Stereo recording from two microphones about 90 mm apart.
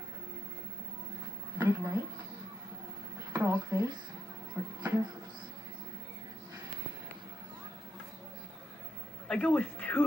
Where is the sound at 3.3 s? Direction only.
35° right (ahead or behind).